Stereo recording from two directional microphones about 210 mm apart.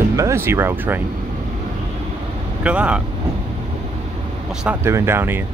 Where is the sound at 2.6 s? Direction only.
5° right (ahead or behind).